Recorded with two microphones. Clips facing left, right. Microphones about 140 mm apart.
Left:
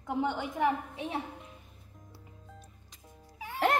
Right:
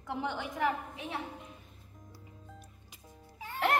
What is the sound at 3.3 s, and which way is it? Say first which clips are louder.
Music: left 2 dB; 10° left (ahead or behind).